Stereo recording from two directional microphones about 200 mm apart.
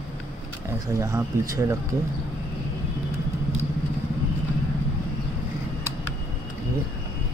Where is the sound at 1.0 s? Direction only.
15° right (ahead or behind).